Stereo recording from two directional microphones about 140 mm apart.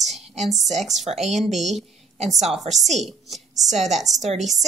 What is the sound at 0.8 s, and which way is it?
Speech, centre (ahead or behind).